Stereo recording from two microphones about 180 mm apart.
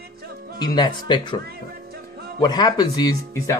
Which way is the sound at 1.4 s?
60° right (ahead or behind).